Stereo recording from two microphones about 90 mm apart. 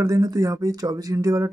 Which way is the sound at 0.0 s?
40° right (ahead or behind).